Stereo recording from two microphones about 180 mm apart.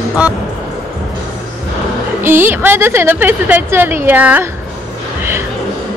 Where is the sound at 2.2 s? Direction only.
10° right (ahead or behind).